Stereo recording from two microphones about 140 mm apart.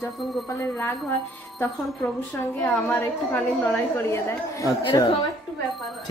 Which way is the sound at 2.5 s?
10° left (ahead or behind).